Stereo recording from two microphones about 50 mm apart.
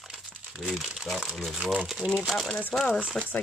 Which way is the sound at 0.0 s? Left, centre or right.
Centre.